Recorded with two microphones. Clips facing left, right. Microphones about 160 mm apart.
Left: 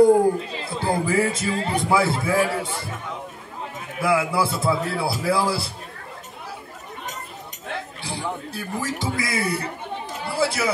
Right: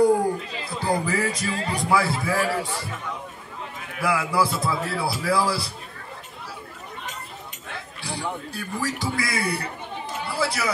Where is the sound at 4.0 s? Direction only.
25° left (ahead or behind).